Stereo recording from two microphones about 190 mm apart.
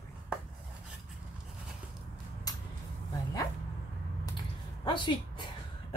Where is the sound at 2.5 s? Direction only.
20° left (ahead or behind).